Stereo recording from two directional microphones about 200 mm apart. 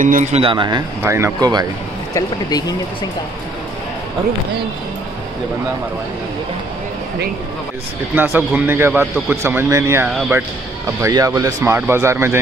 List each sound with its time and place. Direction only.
0.0 s speech: 40° right (ahead or behind); by 1.7 s 20° right (ahead or behind)
2.1 s speech: 20° left (ahead or behind)
8.1 s speech: 10° right (ahead or behind)